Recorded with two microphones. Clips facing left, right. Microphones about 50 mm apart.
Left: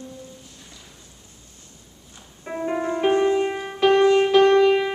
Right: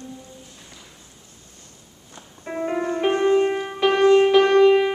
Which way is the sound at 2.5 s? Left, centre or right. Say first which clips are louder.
Right 1 dB; centre.